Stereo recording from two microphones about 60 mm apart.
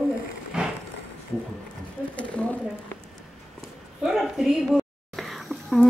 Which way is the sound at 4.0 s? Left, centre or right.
Centre.